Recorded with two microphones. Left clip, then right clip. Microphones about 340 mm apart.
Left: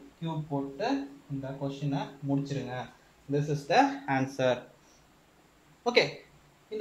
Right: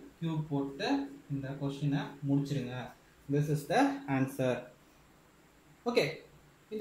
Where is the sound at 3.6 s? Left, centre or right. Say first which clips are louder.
Left 6 dB; left.